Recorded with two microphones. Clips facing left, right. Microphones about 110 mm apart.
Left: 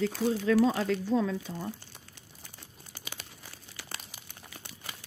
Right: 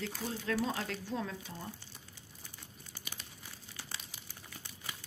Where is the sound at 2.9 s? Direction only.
80° left.